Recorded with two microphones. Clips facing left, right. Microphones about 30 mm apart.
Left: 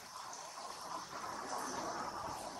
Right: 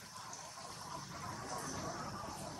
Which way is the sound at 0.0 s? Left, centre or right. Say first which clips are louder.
Left 2 dB; centre.